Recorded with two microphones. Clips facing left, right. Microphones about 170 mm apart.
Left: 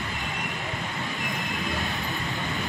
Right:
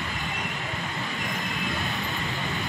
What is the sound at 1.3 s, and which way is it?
Vehicle, centre (ahead or behind).